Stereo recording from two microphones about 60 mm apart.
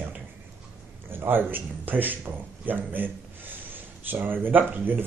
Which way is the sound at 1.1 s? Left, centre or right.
Right.